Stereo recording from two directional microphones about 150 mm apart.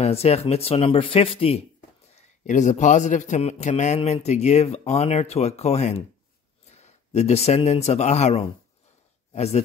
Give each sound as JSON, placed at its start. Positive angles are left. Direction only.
{"t": 0.0, "sound": "speech", "side_deg": 45}
{"t": 2.1, "sound": "speech", "side_deg": 55}